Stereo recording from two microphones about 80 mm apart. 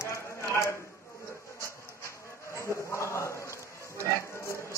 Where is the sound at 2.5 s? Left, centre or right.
Left.